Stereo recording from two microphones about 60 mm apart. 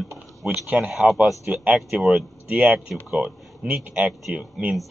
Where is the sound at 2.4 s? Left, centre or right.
Centre.